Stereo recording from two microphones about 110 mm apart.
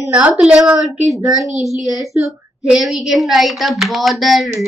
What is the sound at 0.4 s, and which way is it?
A woman's voice, 5° right (ahead or behind).